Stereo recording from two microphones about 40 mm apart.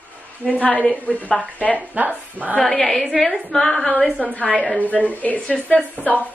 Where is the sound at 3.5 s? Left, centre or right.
Centre.